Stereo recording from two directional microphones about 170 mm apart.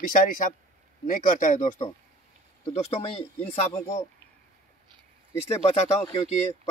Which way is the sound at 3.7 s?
15° left (ahead or behind).